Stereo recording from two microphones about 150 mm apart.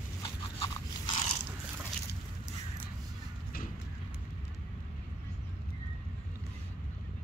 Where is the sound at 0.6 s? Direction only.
35° left (ahead or behind).